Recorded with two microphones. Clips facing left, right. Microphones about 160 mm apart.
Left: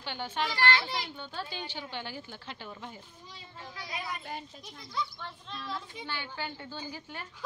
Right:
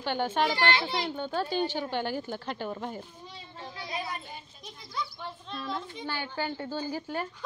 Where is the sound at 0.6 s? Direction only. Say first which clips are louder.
Right 2 dB; 20° right (ahead or behind).